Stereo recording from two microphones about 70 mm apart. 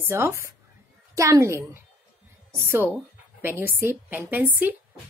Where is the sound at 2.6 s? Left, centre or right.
Right.